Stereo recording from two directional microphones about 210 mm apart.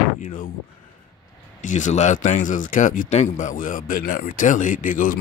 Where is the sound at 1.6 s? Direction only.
35° left (ahead or behind).